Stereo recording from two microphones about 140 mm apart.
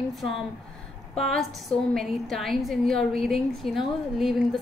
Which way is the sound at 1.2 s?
Centre (ahead or behind).